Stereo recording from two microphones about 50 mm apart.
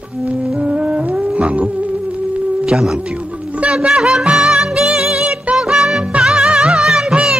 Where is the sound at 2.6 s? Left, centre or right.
Centre.